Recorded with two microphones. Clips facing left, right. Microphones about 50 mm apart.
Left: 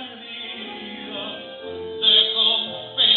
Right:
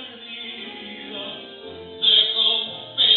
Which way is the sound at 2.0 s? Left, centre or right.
Left.